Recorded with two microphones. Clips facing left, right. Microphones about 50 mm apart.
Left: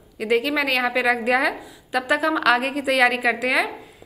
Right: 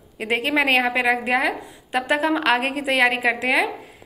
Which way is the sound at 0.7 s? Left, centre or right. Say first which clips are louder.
Right 1 dB; right.